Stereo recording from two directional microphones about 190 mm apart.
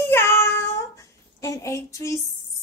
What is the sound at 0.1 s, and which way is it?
Child singing, 15° left (ahead or behind).